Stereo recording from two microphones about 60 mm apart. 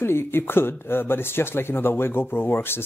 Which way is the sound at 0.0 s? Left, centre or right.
Left.